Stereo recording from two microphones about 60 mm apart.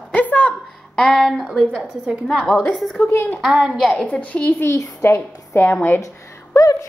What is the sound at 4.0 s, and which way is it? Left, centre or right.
Speech, left.